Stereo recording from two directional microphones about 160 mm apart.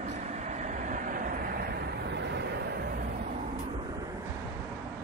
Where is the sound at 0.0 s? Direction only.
45° right (ahead or behind); by 3.3 s 75° right (ahead or behind).